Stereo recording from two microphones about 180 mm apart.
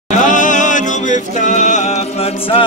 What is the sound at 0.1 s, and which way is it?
Music, 45° left (ahead or behind).